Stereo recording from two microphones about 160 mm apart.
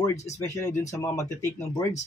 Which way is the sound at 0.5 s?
20° left (ahead or behind).